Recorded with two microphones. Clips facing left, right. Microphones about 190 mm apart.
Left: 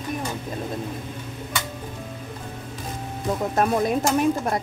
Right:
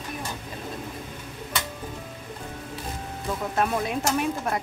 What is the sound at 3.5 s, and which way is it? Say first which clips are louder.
Speech: left 4 dB; 40° left (ahead or behind).